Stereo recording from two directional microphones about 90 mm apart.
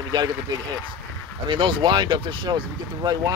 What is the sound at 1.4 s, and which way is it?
Speech, 65° right (ahead or behind).